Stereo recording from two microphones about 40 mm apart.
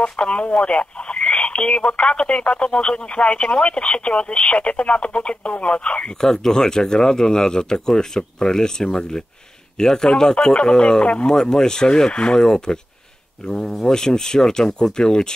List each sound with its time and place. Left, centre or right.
0.0 s speech: left
6.2 s speech: centre
12.4 s speech: centre